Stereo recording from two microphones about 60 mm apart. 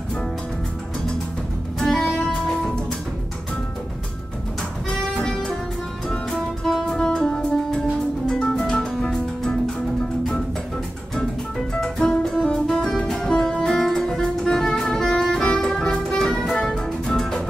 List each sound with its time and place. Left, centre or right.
1.8 s music: centre
4.8 s music: centre
11.7 s music: centre